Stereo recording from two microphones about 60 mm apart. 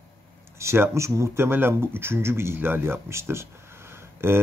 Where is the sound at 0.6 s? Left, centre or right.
Right.